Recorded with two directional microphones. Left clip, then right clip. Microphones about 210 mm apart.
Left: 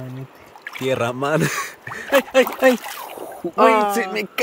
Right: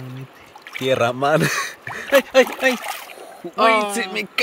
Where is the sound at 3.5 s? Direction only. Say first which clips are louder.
Left 2 dB; 15° left (ahead or behind).